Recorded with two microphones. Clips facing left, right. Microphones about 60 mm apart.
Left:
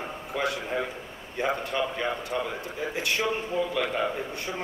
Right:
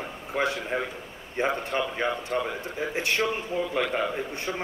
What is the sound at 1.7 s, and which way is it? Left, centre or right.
Speech, centre.